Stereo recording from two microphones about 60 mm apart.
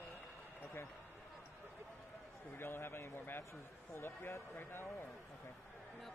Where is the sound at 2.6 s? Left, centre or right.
Left.